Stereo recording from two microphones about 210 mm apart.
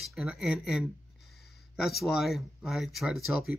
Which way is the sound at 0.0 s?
Centre (ahead or behind).